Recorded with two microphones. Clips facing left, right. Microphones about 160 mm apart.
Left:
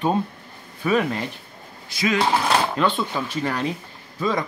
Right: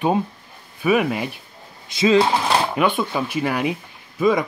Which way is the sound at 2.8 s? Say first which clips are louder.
Right 2 dB; 15° right (ahead or behind).